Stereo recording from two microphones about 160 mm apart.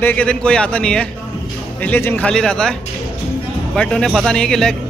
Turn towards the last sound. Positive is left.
turn(degrees=5)  # may be behind; listen again after turning